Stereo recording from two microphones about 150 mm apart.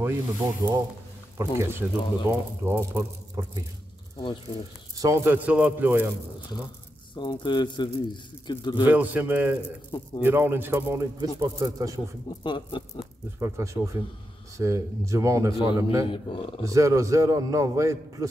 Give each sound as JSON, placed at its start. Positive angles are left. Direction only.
{"t": 0.0, "sound": "a man's voice", "side_deg": -20}
{"t": 4.9, "sound": "a man's voice", "side_deg": -20}
{"t": 7.2, "sound": "speech", "side_deg": 30}
{"t": 8.8, "sound": "a man's voice", "side_deg": -10}
{"t": 12.3, "sound": "speech", "side_deg": 30}
{"t": 13.4, "sound": "a man's voice", "side_deg": -20}
{"t": 16.1, "sound": "speech", "side_deg": 35}
{"t": 16.6, "sound": "a man's voice", "side_deg": -20}